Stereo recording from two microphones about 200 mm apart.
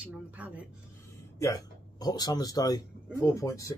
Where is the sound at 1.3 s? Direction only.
15° left (ahead or behind).